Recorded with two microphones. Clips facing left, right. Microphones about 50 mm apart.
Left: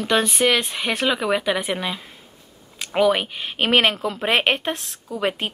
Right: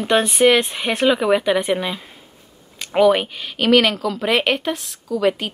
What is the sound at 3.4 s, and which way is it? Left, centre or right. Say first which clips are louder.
A woman's voice: right 3 dB; left.